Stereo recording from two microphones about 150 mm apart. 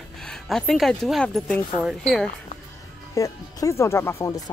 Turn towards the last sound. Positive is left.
turn(degrees=20)  # may be behind; listen again after turning